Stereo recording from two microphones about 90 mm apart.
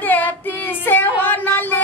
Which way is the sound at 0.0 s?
20° left (ahead or behind).